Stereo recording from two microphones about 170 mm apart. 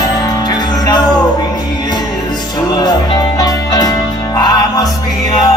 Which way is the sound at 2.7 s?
25° left (ahead or behind).